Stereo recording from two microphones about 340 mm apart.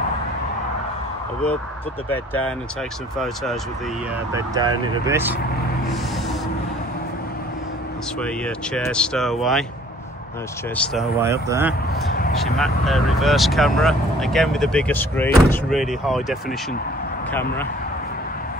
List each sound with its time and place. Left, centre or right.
2.0 s speech: centre
4.3 s speech: centre
8.2 s speech: centre
10.8 s speech: centre
11.9 s speech: left
12.5 s speech: centre